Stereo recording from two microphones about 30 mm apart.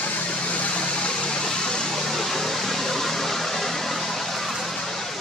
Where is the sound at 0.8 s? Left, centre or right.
Left.